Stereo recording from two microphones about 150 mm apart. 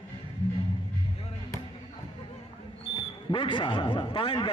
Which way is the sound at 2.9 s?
35° left (ahead or behind).